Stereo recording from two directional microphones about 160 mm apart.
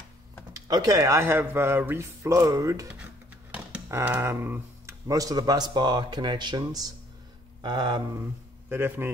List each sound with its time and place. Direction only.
0.5 s speech: 25° right (ahead or behind)
3.5 s speech: 10° right (ahead or behind); by 8.2 s 30° right (ahead or behind)
8.2 s speech: 15° right (ahead or behind)